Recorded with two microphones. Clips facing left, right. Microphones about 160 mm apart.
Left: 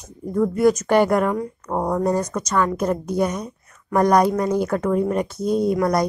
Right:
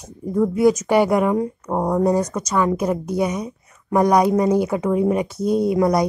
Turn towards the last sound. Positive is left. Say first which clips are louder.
# right 1 dB
turn(degrees=-5)  # may be behind; listen again after turning